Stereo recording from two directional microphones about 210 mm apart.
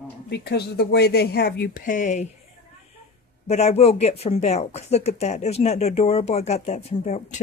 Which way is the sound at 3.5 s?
30° left (ahead or behind).